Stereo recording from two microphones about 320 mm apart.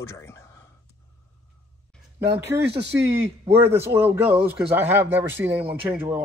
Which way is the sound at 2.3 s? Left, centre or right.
Centre.